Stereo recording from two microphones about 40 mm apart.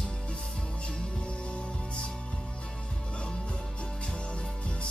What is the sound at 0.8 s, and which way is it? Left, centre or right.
Music, left.